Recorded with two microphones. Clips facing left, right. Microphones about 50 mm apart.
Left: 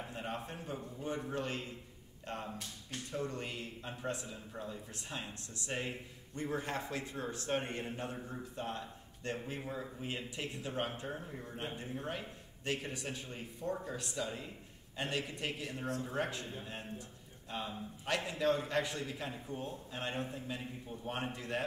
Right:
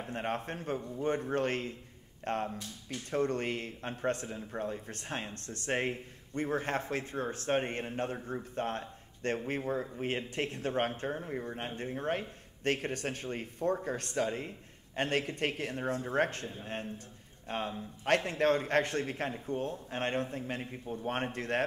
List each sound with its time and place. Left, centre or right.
0.0 s speech: right